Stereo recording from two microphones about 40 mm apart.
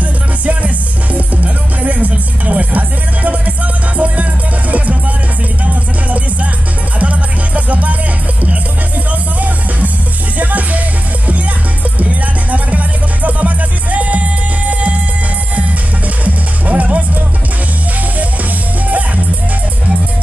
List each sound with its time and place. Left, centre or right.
1.1 s music: right
4.0 s music: right
10.4 s music: right
12.0 s music: right
16.3 s music: right
18.9 s music: right